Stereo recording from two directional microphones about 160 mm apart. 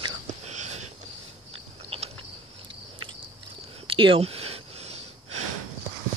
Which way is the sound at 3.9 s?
35° right (ahead or behind).